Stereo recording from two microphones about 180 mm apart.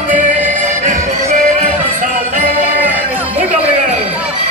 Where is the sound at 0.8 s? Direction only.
40° right (ahead or behind).